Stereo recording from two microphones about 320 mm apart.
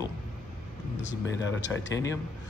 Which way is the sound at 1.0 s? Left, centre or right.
Left.